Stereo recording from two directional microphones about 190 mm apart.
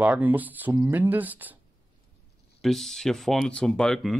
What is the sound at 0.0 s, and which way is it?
Speech, 10° right (ahead or behind).